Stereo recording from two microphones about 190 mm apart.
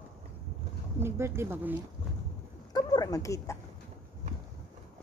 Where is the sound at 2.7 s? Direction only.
20° left (ahead or behind).